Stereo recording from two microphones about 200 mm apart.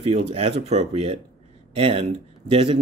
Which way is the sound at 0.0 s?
30° right (ahead or behind).